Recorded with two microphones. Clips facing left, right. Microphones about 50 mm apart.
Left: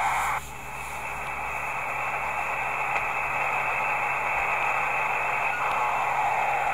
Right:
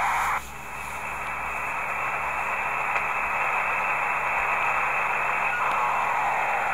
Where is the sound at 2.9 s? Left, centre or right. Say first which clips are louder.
Right 1 dB; centre.